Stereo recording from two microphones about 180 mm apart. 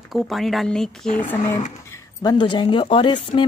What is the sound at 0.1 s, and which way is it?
A woman's voice, centre (ahead or behind).